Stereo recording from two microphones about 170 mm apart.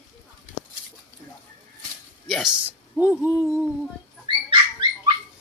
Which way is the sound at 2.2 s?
Centre (ahead or behind).